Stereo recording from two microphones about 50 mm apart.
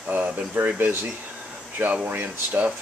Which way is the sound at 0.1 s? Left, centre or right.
Right.